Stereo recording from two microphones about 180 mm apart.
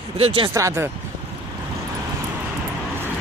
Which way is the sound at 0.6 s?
15° right (ahead or behind).